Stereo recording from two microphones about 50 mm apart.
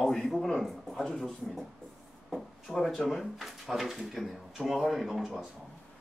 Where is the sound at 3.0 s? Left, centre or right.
Centre.